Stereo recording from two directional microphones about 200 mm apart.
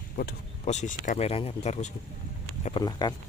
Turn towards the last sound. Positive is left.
turn(degrees=20)  # may be behind; listen again after turning